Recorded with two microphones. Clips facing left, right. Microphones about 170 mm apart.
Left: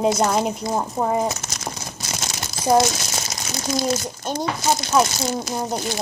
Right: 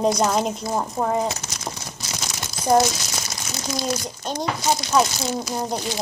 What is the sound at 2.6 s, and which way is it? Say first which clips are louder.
Crumpling: left 1 dB; 25° left (ahead or behind).